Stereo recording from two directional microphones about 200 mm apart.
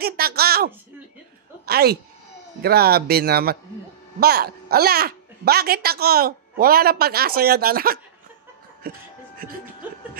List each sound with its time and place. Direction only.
0.0 s speech: 50° right (ahead or behind)
1.7 s speech: 50° right (ahead or behind)